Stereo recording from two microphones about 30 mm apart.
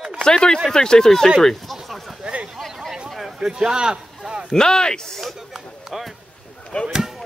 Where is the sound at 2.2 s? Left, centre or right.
Right.